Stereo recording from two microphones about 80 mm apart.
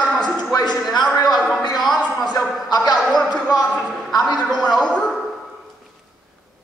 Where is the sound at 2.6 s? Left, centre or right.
Left.